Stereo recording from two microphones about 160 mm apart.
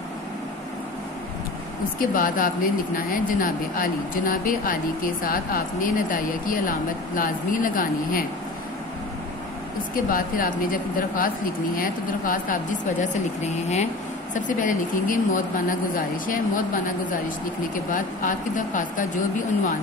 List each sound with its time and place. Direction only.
2.0 s speech: 60° left (ahead or behind)
9.9 s speech: 60° left (ahead or behind)
14.3 s speech: 55° left (ahead or behind)